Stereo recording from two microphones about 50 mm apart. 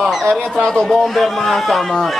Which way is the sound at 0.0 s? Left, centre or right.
Centre.